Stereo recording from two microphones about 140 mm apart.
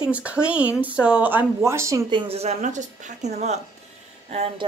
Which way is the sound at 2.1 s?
35° right (ahead or behind).